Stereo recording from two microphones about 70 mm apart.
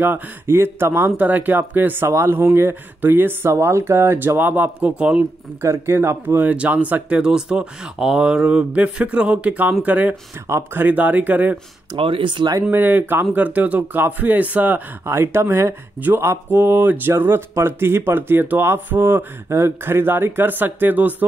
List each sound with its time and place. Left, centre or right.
0.0 s speech: right
2.0 s speech: right
4.8 s speech: centre
5.6 s speech: right
12.7 s speech: right
15.0 s speech: right